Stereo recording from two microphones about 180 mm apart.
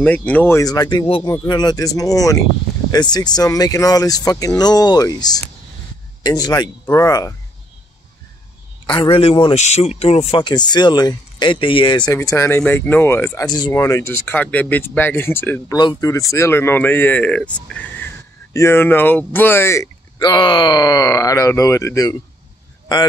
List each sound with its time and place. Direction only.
0.0 s speech: 10° left (ahead or behind)
8.8 s speech: 25° left (ahead or behind)
12.1 s speech: 15° left (ahead or behind)